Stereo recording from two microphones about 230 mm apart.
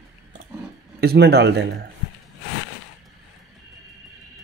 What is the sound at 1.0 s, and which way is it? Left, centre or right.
Speech, right.